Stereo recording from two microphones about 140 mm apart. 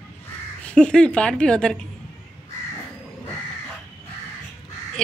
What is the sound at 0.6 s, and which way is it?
A woman's voice, 5° left (ahead or behind).